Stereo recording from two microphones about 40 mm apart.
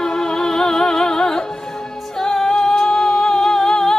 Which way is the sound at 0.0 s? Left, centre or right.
Centre.